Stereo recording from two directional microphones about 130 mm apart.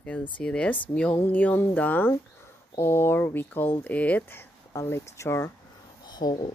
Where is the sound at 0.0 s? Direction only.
10° left (ahead or behind).